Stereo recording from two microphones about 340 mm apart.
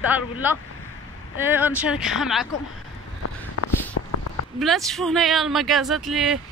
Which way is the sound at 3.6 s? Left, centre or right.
Left.